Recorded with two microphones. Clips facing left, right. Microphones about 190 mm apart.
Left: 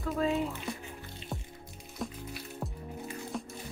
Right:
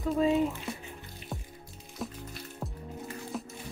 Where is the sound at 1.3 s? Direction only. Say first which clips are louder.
Even; centre (ahead or behind).